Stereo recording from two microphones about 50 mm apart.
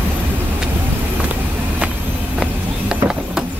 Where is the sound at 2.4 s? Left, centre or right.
Centre.